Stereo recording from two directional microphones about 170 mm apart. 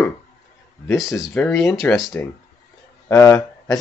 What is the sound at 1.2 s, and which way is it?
Speech, 5° left (ahead or behind).